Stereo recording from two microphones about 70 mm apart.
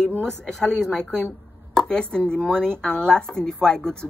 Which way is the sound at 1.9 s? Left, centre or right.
Centre.